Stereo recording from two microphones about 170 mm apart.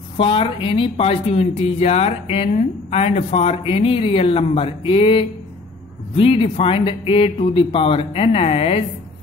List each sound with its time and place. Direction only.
0.2 s speech: 30° left (ahead or behind)